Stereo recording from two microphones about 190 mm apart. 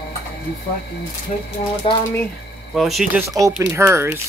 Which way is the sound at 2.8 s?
Centre (ahead or behind).